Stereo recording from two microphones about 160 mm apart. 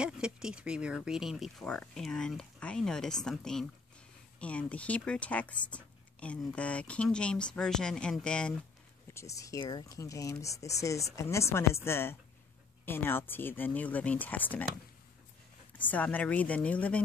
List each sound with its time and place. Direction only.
0.0 s speech: 5° right (ahead or behind)
9.1 s speech: 20° left (ahead or behind)
15.8 s speech: 10° left (ahead or behind)